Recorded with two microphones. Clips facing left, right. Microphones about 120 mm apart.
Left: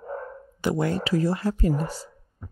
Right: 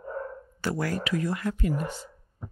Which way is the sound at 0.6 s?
20° left (ahead or behind).